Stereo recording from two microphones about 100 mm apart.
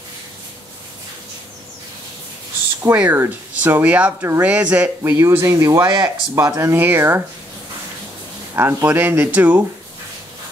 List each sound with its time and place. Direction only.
2.8 s speech: 20° right (ahead or behind)
6.7 s speech: 20° right (ahead or behind)
8.5 s speech: 20° right (ahead or behind)